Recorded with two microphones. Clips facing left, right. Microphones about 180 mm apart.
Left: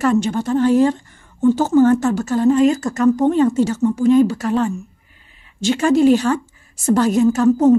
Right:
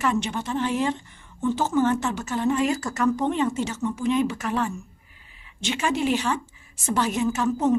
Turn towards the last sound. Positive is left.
turn(degrees=40)  # may be behind; listen again after turning